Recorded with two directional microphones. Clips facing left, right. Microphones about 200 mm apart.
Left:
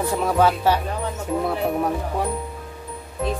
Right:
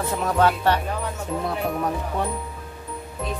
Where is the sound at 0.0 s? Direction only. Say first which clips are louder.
Left 2 dB; 10° left (ahead or behind).